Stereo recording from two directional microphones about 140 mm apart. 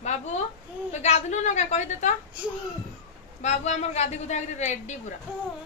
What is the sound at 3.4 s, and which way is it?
A woman's voice, 55° left (ahead or behind).